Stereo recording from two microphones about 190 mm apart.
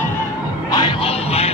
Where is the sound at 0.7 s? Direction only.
25° left (ahead or behind).